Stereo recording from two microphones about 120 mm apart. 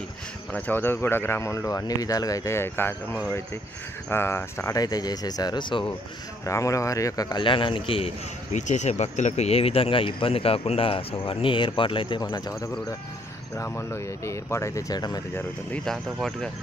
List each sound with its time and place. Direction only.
0.5 s speech: 15° left (ahead or behind); by 5.9 s 40° left (ahead or behind)
6.4 s speech: 25° left (ahead or behind); by 8.1 s 50° left (ahead or behind)
8.5 s speech: 80° left; by 12.2 s 45° left (ahead or behind)
12.2 s speech: 30° left (ahead or behind)
15.8 s speech: 5° left (ahead or behind)